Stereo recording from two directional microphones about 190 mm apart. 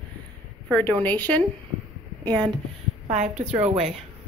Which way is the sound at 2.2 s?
20° right (ahead or behind).